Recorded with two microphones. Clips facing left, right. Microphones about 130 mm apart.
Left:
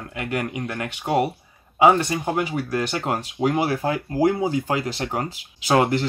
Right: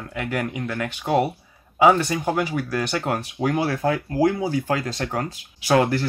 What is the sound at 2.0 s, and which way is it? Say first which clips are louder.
Speech: right 1 dB; 20° left (ahead or behind).